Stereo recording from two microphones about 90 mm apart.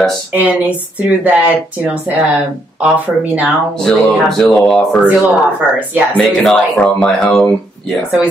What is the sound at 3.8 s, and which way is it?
Speech, 10° left (ahead or behind).